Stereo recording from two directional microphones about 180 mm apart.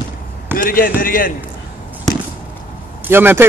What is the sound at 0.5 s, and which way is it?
Speech, 50° left (ahead or behind).